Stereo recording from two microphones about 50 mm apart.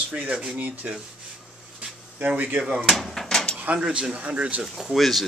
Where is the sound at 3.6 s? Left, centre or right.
Right.